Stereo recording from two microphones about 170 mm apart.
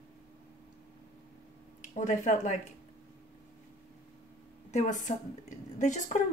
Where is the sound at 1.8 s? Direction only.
45° left (ahead or behind).